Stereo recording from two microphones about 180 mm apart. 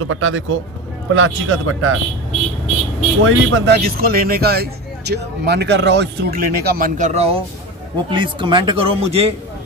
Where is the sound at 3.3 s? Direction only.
80° right.